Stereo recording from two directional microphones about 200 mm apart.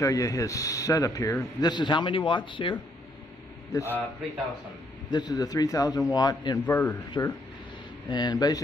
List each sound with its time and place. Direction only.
0.0 s a man's voice: 15° left (ahead or behind)
3.7 s a man's voice: 10° left (ahead or behind)
5.1 s a man's voice: 20° left (ahead or behind)
6.6 s a man's voice: 10° left (ahead or behind)